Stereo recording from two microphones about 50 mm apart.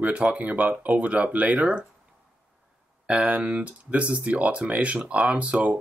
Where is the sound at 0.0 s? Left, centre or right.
Right.